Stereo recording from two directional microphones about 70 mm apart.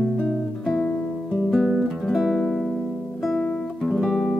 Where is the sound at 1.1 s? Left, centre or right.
Centre.